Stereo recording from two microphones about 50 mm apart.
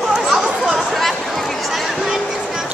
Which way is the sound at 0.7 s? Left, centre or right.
Centre.